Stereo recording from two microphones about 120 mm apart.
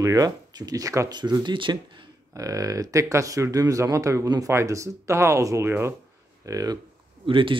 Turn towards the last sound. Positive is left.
turn(degrees=-45)  # may be behind; listen again after turning